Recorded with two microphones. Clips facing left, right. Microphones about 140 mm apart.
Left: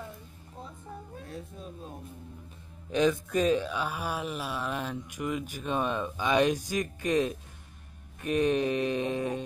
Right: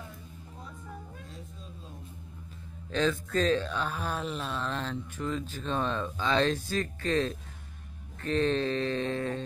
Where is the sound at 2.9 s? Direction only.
15° left (ahead or behind).